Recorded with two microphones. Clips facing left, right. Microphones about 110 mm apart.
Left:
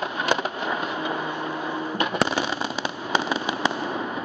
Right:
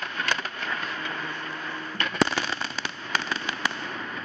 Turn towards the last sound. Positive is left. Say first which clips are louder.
# left 6 dB
turn(degrees=15)  # may be behind; listen again after turning